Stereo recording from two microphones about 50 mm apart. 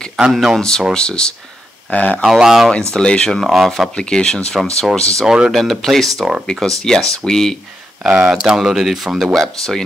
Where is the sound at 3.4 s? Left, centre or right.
Centre.